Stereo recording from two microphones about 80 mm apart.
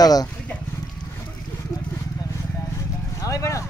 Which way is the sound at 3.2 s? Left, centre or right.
Left.